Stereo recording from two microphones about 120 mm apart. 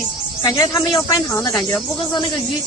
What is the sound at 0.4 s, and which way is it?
Speech, 30° left (ahead or behind).